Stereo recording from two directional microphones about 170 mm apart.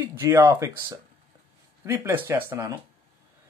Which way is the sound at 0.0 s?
15° right (ahead or behind).